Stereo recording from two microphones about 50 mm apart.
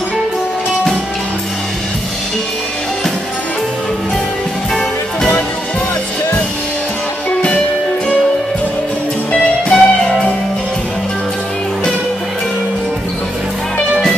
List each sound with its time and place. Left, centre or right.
9.3 s music: centre